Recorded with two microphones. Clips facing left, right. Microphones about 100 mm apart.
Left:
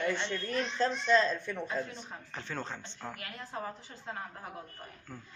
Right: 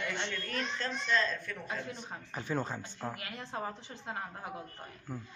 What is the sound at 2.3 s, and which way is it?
Speech, 10° right (ahead or behind).